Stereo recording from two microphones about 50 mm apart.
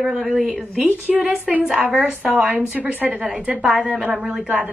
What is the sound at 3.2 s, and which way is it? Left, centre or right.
A woman's voice, centre.